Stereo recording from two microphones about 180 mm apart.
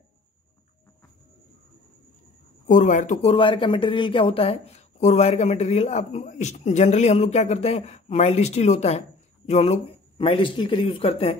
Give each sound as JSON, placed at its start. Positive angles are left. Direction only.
{"t": 2.6, "sound": "speech", "side_deg": 45}